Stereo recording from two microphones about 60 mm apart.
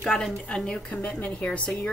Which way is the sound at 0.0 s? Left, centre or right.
Centre.